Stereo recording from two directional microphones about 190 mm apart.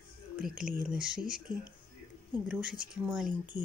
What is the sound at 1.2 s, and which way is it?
Speech, 45° right (ahead or behind).